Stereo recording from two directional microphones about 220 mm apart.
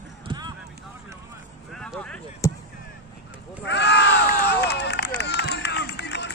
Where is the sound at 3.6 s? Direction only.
50° left (ahead or behind).